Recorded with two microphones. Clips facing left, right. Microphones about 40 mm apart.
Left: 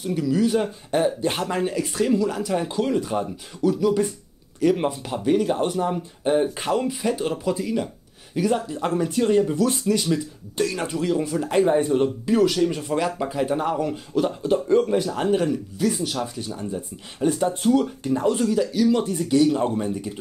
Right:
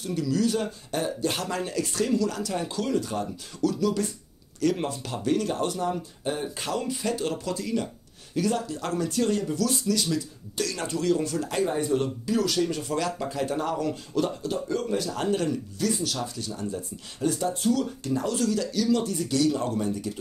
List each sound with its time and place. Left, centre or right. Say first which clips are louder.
0.0 s speech: left 4 dB; centre
14.5 s speech: left 9 dB; left
15.1 s speech: left 5 dB; centre